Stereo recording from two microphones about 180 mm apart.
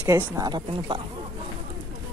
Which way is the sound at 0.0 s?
20° right (ahead or behind).